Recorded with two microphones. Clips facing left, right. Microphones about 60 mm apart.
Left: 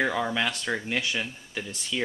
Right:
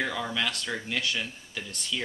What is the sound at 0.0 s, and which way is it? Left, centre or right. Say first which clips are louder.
Speech: left 4 dB; centre.